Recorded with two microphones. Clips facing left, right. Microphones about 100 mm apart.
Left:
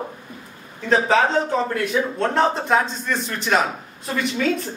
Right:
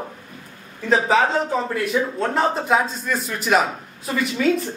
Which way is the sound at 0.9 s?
5° right (ahead or behind).